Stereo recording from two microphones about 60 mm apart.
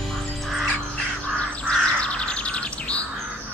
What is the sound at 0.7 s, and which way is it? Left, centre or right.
Bird, centre.